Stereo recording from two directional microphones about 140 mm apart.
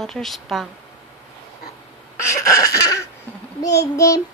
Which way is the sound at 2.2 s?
20° left (ahead or behind).